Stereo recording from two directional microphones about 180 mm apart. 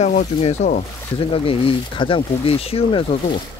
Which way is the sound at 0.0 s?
40° left (ahead or behind).